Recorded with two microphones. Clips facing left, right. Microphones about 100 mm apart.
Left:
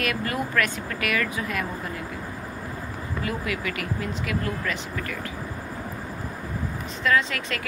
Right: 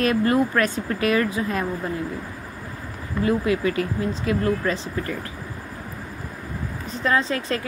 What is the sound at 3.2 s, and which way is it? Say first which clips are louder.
Speech: right 9 dB; 30° right (ahead or behind).